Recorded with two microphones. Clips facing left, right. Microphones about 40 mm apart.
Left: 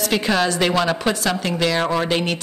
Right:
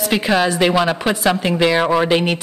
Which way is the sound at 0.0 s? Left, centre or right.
Centre.